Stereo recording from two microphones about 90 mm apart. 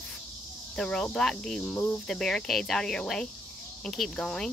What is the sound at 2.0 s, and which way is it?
Speech, 5° left (ahead or behind).